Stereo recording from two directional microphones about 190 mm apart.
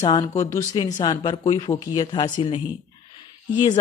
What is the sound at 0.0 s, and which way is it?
Speech, 20° left (ahead or behind).